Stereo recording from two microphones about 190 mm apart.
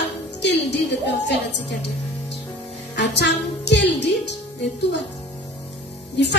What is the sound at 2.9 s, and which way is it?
A woman's voice, 65° left (ahead or behind).